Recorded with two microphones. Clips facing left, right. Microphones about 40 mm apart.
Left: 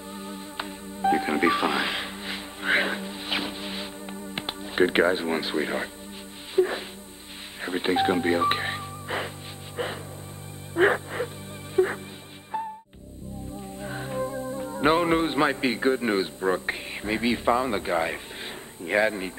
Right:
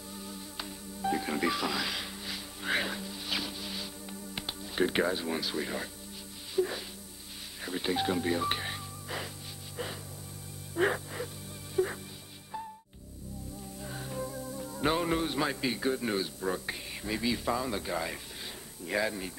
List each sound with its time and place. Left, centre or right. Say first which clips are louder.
0.1 s music: left 6 dB; left
13.7 s speech: left 8 dB; left